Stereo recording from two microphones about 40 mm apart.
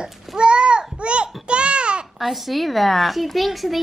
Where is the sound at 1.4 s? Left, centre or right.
Right.